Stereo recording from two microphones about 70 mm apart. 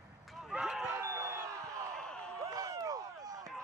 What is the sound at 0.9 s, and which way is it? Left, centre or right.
Crowd, right.